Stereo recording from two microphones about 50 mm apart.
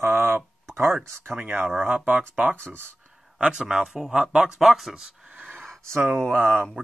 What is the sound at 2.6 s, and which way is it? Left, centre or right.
Speech, right.